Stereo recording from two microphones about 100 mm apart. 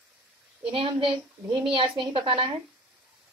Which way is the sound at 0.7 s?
60° right (ahead or behind).